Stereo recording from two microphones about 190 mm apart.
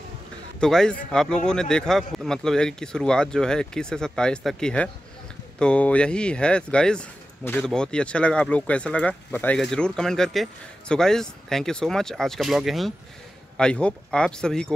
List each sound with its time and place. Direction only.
0.6 s speech: 5° left (ahead or behind)